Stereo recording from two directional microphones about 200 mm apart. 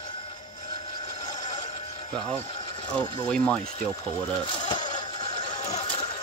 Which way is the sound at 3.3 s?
5° left (ahead or behind).